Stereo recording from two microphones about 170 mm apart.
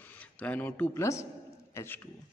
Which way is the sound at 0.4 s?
10° left (ahead or behind).